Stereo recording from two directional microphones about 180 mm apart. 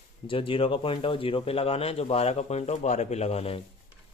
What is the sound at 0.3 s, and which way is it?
A man's voice, 30° left (ahead or behind).